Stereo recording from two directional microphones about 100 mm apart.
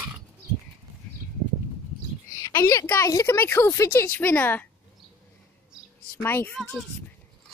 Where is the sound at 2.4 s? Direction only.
35° left (ahead or behind); by 4.6 s 20° left (ahead or behind).